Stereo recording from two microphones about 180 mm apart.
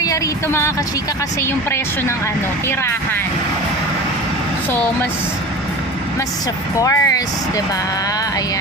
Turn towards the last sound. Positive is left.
turn(degrees=15)  # may be behind; listen again after turning